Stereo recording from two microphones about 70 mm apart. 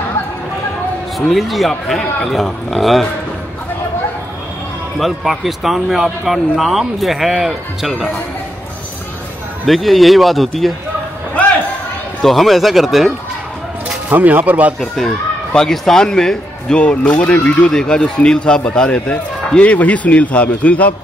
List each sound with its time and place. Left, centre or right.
1.3 s speech: centre
4.9 s speech: centre
9.7 s speech: centre
12.2 s speech: centre
13.8 s speech: right
15.5 s speech: centre